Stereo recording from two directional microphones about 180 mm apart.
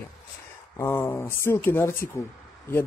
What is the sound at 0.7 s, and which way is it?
Speech, 15° left (ahead or behind).